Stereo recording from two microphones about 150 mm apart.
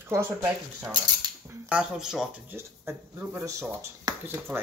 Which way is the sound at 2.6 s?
15° right (ahead or behind).